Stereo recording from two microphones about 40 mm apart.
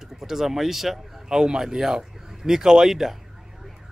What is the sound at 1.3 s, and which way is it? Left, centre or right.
Speech, centre.